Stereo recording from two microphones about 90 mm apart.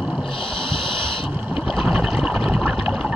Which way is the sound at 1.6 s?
10° right (ahead or behind).